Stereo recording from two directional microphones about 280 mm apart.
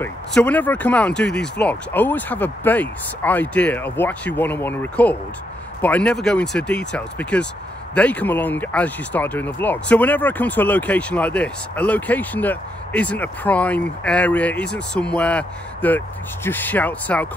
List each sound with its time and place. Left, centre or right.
0.0 s speech: centre